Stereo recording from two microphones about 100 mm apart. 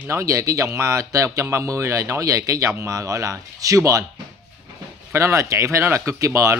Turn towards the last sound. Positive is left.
turn(degrees=-30)  # may be behind; listen again after turning